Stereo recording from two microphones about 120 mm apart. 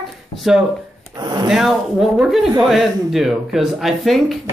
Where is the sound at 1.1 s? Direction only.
35° right (ahead or behind).